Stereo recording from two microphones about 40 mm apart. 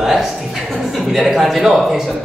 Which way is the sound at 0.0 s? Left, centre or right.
Centre.